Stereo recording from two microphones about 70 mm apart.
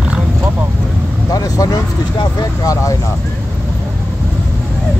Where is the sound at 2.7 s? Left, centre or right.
Left.